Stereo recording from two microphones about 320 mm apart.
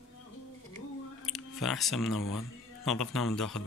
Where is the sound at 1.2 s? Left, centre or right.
Centre.